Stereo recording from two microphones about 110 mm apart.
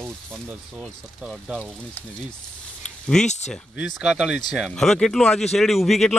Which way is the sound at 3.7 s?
5° right (ahead or behind).